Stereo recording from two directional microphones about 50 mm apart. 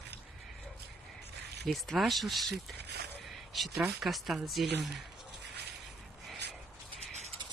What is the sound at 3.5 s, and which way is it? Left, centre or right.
Speech, centre.